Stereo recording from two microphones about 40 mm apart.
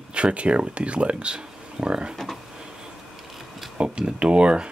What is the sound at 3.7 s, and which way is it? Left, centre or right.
Speech, right.